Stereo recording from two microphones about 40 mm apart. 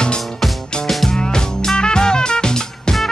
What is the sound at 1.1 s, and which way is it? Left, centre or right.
Music, centre.